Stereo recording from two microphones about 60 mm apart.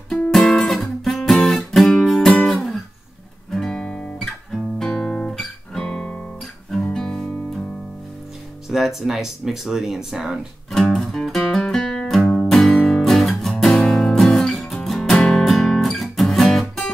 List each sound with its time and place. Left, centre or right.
0.5 s guitar: centre
5.9 s music: centre
8.6 s speech: centre
10.7 s music: centre